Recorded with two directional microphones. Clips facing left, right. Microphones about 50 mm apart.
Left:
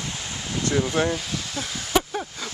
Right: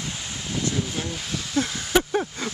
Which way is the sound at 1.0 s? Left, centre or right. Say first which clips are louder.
Left 9 dB; left.